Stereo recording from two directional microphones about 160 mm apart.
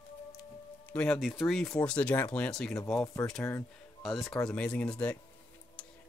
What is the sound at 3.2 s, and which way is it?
Speech, 20° left (ahead or behind).